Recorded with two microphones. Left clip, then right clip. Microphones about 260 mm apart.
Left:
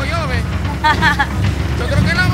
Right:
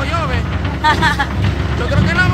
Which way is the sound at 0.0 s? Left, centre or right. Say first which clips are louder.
Right 1 dB; centre.